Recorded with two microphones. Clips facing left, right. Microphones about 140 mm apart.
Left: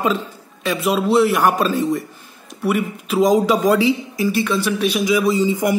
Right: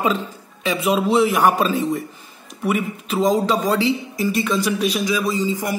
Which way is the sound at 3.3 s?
10° left (ahead or behind).